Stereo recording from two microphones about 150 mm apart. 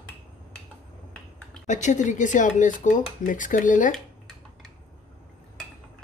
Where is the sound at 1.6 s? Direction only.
55° left (ahead or behind).